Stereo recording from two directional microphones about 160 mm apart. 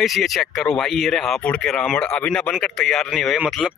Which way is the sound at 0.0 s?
Centre (ahead or behind).